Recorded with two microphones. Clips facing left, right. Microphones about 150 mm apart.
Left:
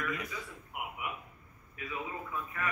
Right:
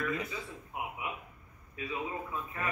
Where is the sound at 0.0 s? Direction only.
30° right (ahead or behind).